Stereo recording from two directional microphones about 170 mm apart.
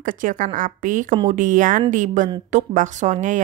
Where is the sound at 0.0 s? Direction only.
50° right (ahead or behind).